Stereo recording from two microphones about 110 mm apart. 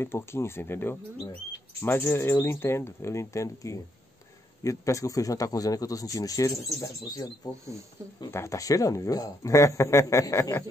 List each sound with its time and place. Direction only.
0.0 s a man's voice: 25° left (ahead or behind)